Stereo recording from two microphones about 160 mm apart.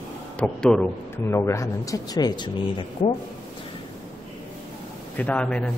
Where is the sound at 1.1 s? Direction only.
15° left (ahead or behind).